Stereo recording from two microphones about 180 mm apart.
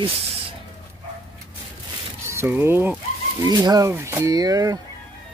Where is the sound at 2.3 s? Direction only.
10° right (ahead or behind).